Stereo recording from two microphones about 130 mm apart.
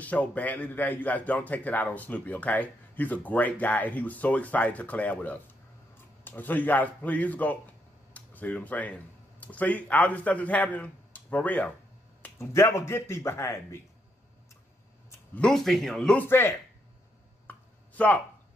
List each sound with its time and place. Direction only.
0.0 s a man's voice: 10° left (ahead or behind)
15.3 s a man's voice: 5° left (ahead or behind)
16.3 s a man's voice: 20° left (ahead or behind)
17.5 s a sound: 10° left (ahead or behind)